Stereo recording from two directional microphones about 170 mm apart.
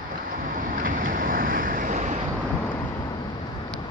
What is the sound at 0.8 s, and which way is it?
Vehicle, 50° right (ahead or behind).